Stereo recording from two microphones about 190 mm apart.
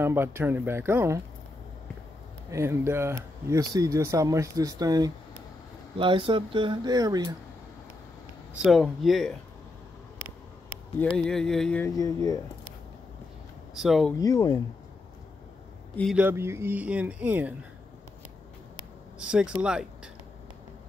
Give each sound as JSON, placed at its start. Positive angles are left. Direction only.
{"t": 0.0, "sound": "speech", "side_deg": -10}
{"t": 2.5, "sound": "speech", "side_deg": -15}
{"t": 8.6, "sound": "speech", "side_deg": 0}
{"t": 11.0, "sound": "speech", "side_deg": 5}
{"t": 11.8, "sound": "speech", "side_deg": 20}
{"t": 13.7, "sound": "speech", "side_deg": 0}
{"t": 14.1, "sound": "speech", "side_deg": 20}
{"t": 16.0, "sound": "speech", "side_deg": 0}
{"t": 16.3, "sound": "speech", "side_deg": -15}
{"t": 19.1, "sound": "speech", "side_deg": -5}